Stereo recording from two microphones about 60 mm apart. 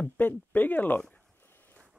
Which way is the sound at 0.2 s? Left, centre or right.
Left.